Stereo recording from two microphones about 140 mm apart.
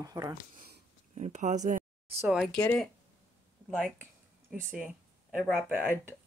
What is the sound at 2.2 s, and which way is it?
Speech, 5° right (ahead or behind).